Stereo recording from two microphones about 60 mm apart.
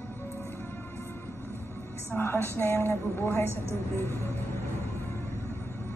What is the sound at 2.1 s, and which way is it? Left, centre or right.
A woman's voice, left.